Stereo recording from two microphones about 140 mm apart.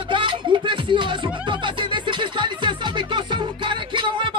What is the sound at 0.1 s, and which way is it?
Music, 35° right (ahead or behind).